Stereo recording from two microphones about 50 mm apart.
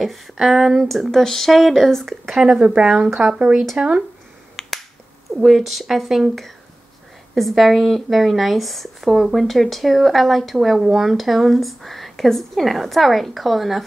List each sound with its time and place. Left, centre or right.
0.0 s speech: centre
2.4 s speech: centre
4.6 s finger snapping: centre
5.4 s speech: centre
7.3 s speech: centre